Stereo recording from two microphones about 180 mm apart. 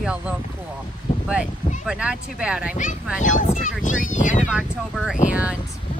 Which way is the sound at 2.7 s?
45° left (ahead or behind).